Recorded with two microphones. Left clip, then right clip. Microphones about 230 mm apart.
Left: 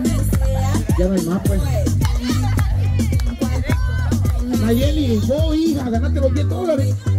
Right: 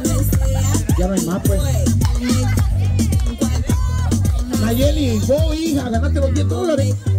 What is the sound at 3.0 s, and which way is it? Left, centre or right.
Music, right.